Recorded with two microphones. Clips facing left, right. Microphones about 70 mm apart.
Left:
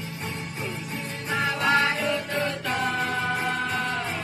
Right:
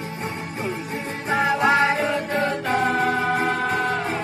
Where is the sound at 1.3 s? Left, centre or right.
Right.